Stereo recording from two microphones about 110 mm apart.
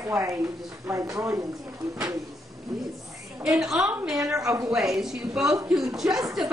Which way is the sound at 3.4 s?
5° right (ahead or behind).